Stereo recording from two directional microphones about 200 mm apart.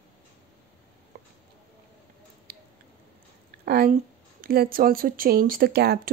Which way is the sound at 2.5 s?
50° right (ahead or behind).